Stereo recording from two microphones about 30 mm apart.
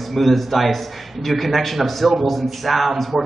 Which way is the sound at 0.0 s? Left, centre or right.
Centre.